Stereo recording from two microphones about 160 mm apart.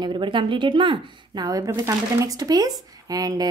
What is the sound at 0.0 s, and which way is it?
Speech, 30° right (ahead or behind).